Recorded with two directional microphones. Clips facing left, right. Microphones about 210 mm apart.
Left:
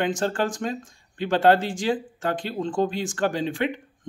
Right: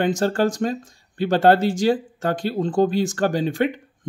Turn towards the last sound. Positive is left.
turn(degrees=-40)  # may be behind; listen again after turning